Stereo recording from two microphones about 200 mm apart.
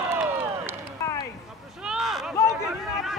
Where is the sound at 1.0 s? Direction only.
15° left (ahead or behind).